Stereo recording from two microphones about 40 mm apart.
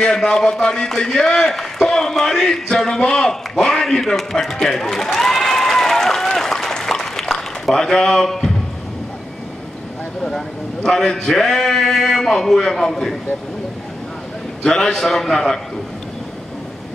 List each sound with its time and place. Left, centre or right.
0.0 s a man's voice: centre
10.2 s a man's voice: centre
14.6 s a man's voice: centre